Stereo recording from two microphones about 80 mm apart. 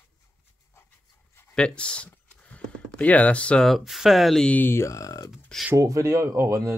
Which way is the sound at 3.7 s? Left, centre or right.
Centre.